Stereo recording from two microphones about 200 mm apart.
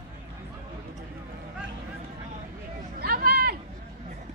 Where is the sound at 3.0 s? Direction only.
45° right (ahead or behind).